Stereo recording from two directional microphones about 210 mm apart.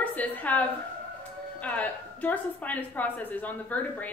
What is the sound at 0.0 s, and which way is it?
A woman's voice, 5° left (ahead or behind).